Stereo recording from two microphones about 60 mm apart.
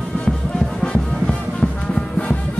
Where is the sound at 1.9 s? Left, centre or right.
Centre.